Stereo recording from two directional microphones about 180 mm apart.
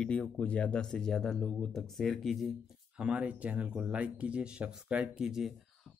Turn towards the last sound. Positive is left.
turn(degrees=0)  # may be behind; listen again after turning